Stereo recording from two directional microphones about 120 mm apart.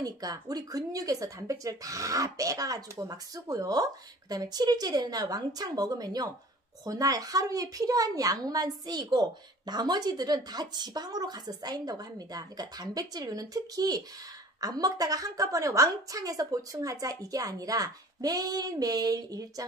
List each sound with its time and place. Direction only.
0.0 s a woman's voice: 30° right (ahead or behind)